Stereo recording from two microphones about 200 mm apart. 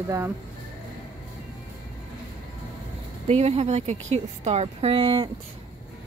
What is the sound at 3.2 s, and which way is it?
Speech, 30° right (ahead or behind).